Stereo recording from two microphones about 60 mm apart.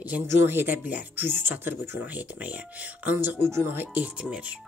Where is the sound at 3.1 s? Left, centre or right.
Right.